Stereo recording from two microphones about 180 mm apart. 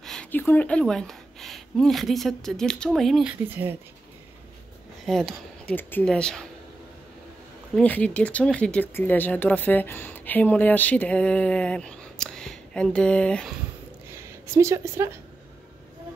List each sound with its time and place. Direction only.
0.0 s speech: 5° left (ahead or behind)
5.0 s speech: centre (ahead or behind)
7.7 s speech: 10° left (ahead or behind)
14.1 s speech: 15° right (ahead or behind)